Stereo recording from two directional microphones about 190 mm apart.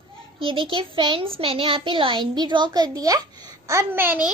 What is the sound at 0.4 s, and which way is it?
A child's voice, 25° right (ahead or behind).